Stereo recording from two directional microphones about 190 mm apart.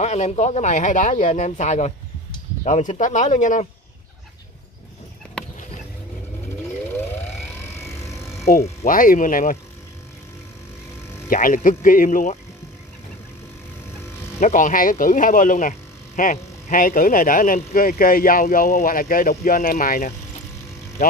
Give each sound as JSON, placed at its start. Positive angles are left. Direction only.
{"t": 0.0, "sound": "speech", "side_deg": 35}
{"t": 5.4, "sound": "a sound", "side_deg": 5}
{"t": 6.9, "sound": "vehicle", "side_deg": 10}
{"t": 8.6, "sound": "speech", "side_deg": 45}
{"t": 11.2, "sound": "speech", "side_deg": 45}
{"t": 14.4, "sound": "speech", "side_deg": 45}